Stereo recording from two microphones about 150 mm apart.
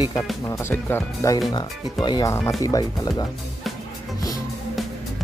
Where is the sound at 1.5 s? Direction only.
30° left (ahead or behind).